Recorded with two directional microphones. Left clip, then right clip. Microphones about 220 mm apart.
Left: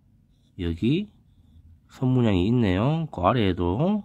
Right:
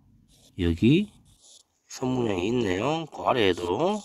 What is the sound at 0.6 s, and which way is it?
Speech, 25° right (ahead or behind).